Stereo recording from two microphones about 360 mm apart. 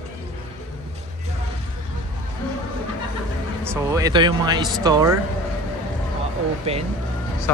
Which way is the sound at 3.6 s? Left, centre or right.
Centre.